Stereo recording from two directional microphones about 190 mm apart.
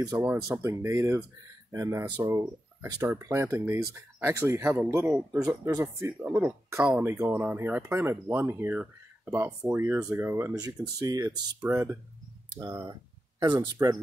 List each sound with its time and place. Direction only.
0.0 s speech: 15° right (ahead or behind)